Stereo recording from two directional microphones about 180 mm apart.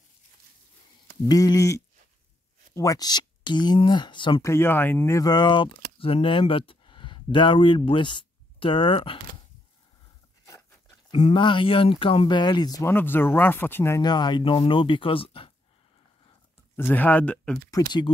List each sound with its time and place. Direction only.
1.3 s speech: 20° left (ahead or behind)
4.5 s speech: 15° left (ahead or behind); by 9.2 s 30° left (ahead or behind)
11.1 s speech: 35° left (ahead or behind)
16.7 s speech: 10° left (ahead or behind)
17.6 s speech: 20° left (ahead or behind)